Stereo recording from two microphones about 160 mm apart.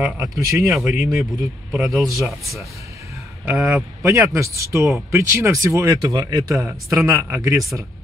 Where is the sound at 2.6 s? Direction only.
20° right (ahead or behind).